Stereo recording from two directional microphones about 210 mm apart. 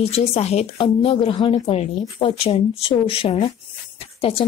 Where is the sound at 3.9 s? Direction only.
25° left (ahead or behind).